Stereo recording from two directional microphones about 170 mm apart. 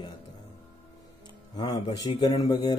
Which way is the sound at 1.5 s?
25° left (ahead or behind).